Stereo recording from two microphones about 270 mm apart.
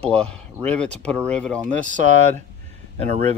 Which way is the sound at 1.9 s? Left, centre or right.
Right.